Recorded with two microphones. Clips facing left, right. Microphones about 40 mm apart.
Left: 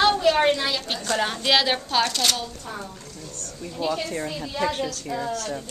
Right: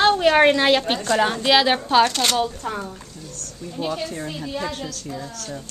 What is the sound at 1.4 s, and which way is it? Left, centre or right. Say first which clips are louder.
Speech: right 2 dB; centre.